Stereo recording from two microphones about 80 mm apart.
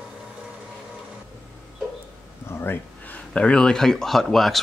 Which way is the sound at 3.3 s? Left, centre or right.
Centre.